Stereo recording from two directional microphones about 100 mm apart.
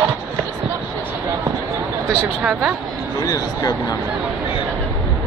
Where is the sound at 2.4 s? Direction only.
15° right (ahead or behind).